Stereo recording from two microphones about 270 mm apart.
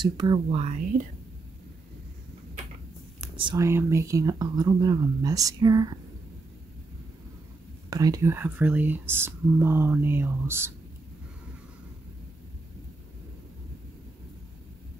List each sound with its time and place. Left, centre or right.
0.0 s speech: centre
3.2 s speech: centre
7.9 s speech: centre